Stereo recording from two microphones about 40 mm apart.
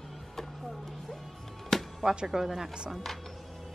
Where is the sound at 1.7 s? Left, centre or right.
Centre.